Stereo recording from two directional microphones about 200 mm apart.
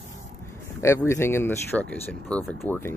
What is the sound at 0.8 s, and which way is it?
Speech, 15° left (ahead or behind).